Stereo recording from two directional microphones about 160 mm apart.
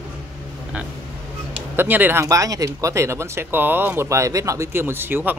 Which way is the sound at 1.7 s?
10° right (ahead or behind).